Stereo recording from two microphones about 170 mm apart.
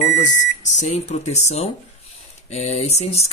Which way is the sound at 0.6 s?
45° left (ahead or behind).